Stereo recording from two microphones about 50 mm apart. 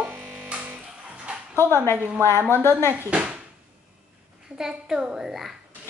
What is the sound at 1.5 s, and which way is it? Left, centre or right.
Speech, left.